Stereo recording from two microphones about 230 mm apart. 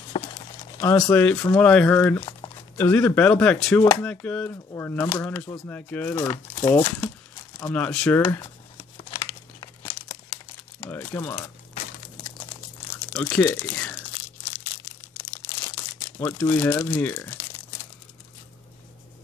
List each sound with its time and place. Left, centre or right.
0.1 s a sound: left
0.7 s speech: centre
2.1 s speech: centre
8.3 s crumpling: centre
10.9 s crumpling: centre
12.9 s speech: centre
16.2 s speech: centre